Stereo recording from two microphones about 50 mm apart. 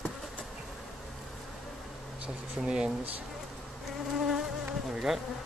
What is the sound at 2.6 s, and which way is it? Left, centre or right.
Speech, centre.